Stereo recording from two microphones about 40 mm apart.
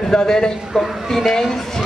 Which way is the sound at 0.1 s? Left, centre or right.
Left.